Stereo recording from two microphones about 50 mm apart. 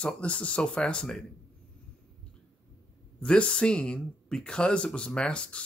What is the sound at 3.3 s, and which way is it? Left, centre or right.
Speech, centre.